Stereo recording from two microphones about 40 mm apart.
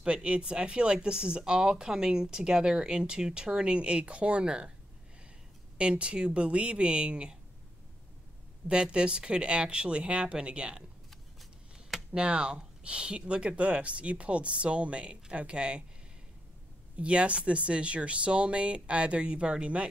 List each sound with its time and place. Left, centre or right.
0.0 s speech: right
5.8 s speech: right
8.9 s speech: right
12.1 s speech: right
16.9 s speech: right